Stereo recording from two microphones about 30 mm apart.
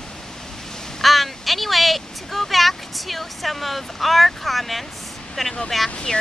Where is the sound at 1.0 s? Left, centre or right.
Centre.